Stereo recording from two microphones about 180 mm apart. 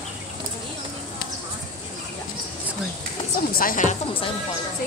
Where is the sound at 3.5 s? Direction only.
50° left (ahead or behind).